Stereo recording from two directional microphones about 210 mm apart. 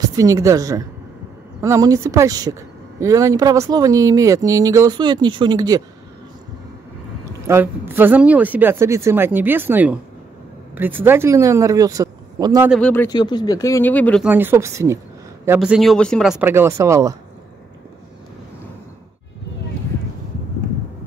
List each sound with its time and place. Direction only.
0.0 s speech: 15° right (ahead or behind)
7.2 s speech: 10° right (ahead or behind)
10.7 s a sound: 10° right (ahead or behind)
11.1 s speech: 10° right (ahead or behind)
12.6 s speech: centre (ahead or behind)
12.9 s speech: 10° left (ahead or behind)
14.2 s speech: 10° right (ahead or behind)